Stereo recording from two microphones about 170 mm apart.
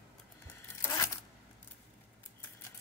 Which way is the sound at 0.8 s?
20° left (ahead or behind).